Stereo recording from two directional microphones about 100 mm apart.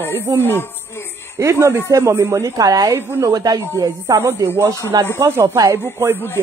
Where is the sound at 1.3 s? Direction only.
30° right (ahead or behind).